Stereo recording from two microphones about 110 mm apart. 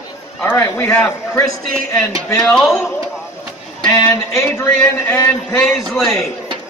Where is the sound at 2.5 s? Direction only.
Centre (ahead or behind).